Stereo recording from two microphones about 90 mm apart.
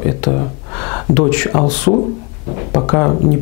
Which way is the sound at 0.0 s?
15° left (ahead or behind).